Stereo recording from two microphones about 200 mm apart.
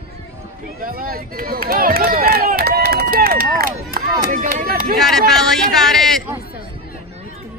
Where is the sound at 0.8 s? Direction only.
45° right (ahead or behind).